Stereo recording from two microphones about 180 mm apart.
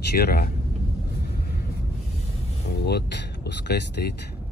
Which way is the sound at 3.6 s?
65° left (ahead or behind).